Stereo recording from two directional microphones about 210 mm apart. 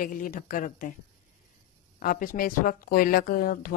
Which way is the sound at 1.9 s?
40° left (ahead or behind).